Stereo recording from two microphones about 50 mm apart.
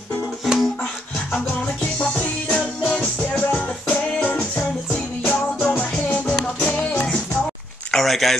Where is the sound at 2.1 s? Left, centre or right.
Left.